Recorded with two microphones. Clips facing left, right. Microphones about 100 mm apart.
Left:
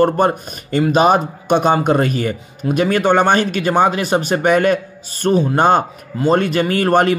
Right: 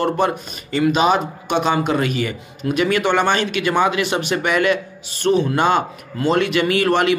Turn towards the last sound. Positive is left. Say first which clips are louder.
# left 2 dB
turn(degrees=45)  # may be behind; listen again after turning